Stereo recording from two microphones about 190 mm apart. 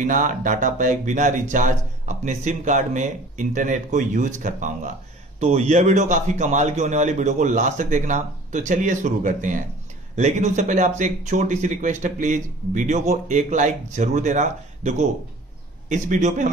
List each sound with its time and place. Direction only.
0.0 s speech: 40° right (ahead or behind)